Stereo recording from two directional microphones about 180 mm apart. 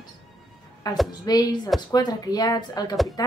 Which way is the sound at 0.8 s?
20° left (ahead or behind).